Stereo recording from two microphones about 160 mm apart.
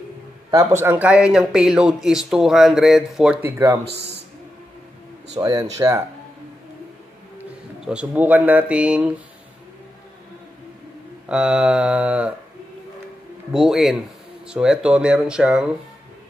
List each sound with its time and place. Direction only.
0.5 s speech: 20° right (ahead or behind)
3.8 s a man's voice: 90° right
5.4 s speech: 25° right (ahead or behind)
7.3 s speech: 5° right (ahead or behind)
11.2 s a sound: 5° right (ahead or behind)
13.5 s speech: 5° right (ahead or behind)